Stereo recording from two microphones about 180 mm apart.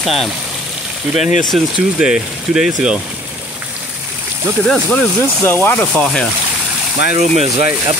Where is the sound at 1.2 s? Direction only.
40° left (ahead or behind).